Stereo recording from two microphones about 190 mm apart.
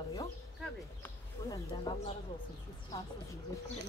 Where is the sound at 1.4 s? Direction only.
20° left (ahead or behind).